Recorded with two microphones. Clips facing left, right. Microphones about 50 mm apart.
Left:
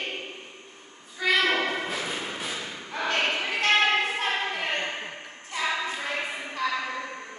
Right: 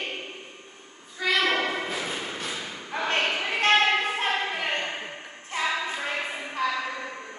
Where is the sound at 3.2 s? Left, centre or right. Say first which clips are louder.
Right 1 dB; centre.